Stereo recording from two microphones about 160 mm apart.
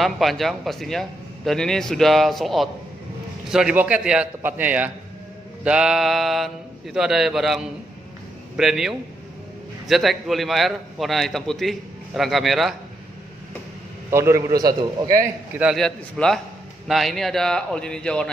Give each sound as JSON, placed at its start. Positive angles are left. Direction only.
{"t": 0.0, "sound": "a man's voice", "side_deg": 0}
{"t": 14.1, "sound": "a man's voice", "side_deg": -15}
{"t": 15.6, "sound": "a man's voice", "side_deg": 0}